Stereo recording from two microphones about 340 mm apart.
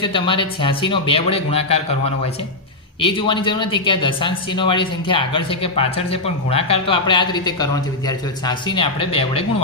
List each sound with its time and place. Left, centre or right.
0.0 s speech: centre
3.0 s speech: centre